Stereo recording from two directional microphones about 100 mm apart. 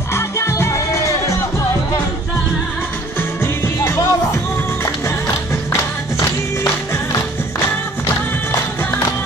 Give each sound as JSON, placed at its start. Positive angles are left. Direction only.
{"t": 0.1, "sound": "music", "side_deg": 30}
{"t": 3.2, "sound": "music", "side_deg": 25}